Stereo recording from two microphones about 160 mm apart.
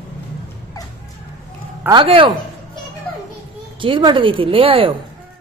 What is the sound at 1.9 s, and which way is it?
Speech, 30° right (ahead or behind).